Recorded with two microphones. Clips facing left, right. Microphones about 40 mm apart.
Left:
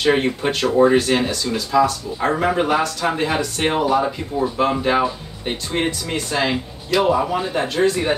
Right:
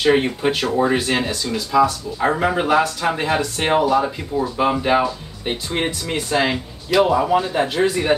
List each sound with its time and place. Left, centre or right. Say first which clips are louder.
0.0 s speech: right 1 dB; centre
4.6 s speech: right 3 dB; centre
7.0 s a man's voice: right 1 dB; centre
7.5 s speech: even; centre